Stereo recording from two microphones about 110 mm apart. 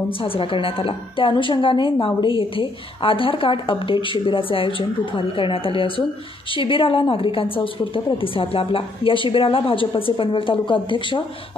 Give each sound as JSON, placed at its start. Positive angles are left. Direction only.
{"t": 0.2, "sound": "a woman's voice", "side_deg": 55}